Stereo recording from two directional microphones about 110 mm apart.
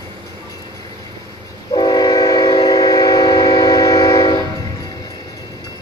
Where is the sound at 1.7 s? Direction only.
35° left (ahead or behind).